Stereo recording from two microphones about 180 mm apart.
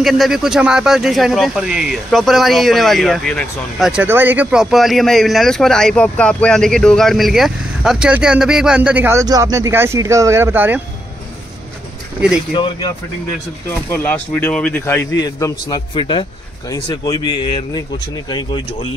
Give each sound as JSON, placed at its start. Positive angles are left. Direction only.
{"t": 0.0, "sound": "speech", "side_deg": 0}
{"t": 12.5, "sound": "speech", "side_deg": 25}
{"t": 13.8, "sound": "a man's voice", "side_deg": 10}